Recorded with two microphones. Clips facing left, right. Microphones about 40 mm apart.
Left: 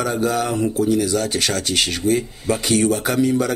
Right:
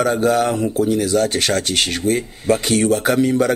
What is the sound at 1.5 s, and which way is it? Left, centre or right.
Speech, centre.